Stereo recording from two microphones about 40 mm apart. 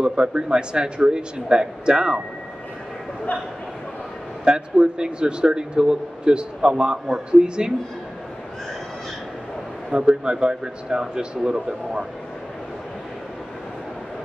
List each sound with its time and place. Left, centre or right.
0.0 s a man's voice: right
4.5 s a man's voice: right
9.8 s a man's voice: right